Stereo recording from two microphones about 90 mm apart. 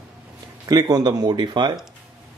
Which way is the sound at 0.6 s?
45° right (ahead or behind).